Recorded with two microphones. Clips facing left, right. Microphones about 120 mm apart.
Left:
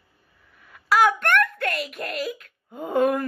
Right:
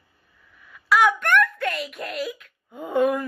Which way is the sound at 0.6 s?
40° left (ahead or behind).